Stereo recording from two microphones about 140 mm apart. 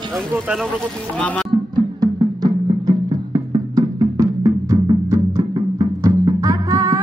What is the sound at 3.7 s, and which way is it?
Music, 25° right (ahead or behind).